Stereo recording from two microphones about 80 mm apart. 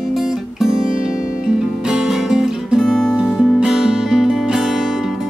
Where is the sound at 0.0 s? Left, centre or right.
Centre.